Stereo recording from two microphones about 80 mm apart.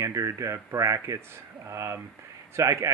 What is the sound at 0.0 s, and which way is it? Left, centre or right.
Speech, right.